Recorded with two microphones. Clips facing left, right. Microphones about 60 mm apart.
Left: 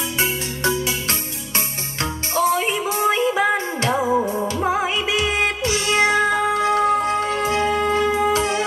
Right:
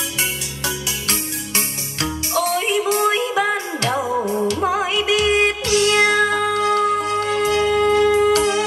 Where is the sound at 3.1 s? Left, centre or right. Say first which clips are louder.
Left 1 dB; left.